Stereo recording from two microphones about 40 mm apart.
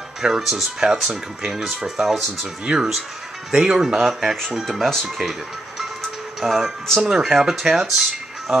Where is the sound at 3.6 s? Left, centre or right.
Centre.